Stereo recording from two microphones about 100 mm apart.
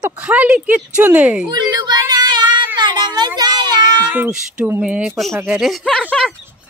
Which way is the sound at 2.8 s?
45° right (ahead or behind).